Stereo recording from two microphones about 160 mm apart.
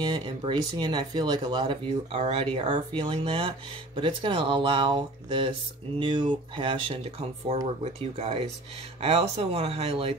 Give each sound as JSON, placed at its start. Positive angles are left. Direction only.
{"t": 0.0, "sound": "speech", "side_deg": -30}